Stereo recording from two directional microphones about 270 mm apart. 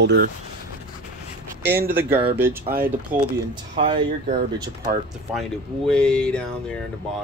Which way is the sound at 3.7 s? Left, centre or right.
Centre.